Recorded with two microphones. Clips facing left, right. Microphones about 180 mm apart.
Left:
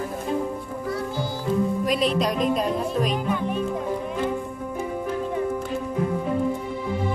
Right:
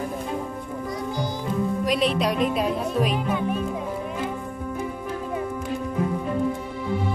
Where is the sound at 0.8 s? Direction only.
15° right (ahead or behind).